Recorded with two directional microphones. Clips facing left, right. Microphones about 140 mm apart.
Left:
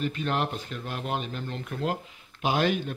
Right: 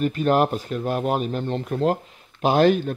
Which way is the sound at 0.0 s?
45° right (ahead or behind).